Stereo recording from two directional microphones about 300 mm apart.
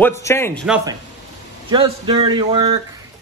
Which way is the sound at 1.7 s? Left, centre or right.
Centre.